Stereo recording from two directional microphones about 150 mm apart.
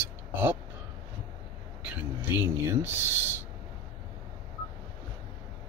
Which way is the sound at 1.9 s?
15° right (ahead or behind).